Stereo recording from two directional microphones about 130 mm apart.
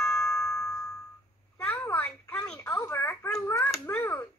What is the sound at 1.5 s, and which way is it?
Telephone, 15° left (ahead or behind).